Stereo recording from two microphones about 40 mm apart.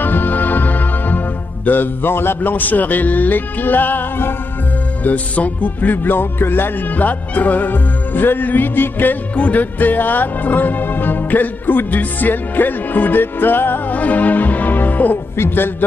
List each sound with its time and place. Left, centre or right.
0.0 s music: left
1.7 s a man's voice: left
2.5 s speech: left
5.0 s speech: left
7.0 s speech: left
9.3 s speech: left
13.9 s music: left
15.3 s a man's voice: left